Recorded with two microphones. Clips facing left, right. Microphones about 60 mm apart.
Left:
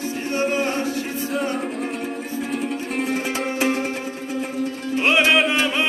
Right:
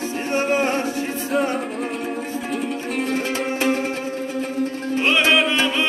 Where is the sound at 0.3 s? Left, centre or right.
Right.